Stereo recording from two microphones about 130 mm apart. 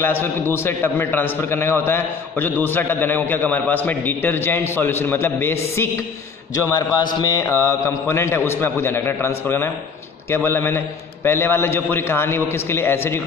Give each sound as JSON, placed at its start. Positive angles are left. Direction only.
{"t": 0.0, "sound": "a man's voice", "side_deg": 15}
{"t": 7.2, "sound": "mantra", "side_deg": 30}
{"t": 7.4, "sound": "a man's voice", "side_deg": 20}